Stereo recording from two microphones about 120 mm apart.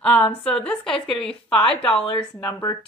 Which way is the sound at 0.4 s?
10° left (ahead or behind).